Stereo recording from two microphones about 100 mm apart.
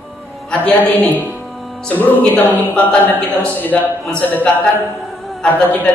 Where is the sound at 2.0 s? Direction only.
20° left (ahead or behind).